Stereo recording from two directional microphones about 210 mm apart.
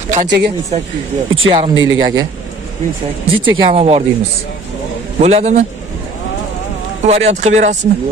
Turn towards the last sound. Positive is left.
turn(degrees=-35)  # may be behind; listen again after turning